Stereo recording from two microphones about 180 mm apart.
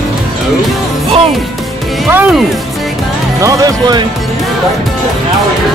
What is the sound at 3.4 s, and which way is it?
Music, 20° right (ahead or behind).